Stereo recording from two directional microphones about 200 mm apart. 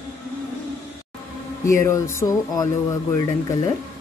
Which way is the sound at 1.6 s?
15° left (ahead or behind).